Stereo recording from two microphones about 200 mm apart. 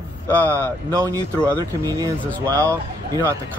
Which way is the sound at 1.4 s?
15° right (ahead or behind).